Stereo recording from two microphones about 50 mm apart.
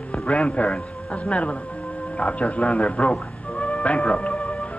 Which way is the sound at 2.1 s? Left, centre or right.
Left.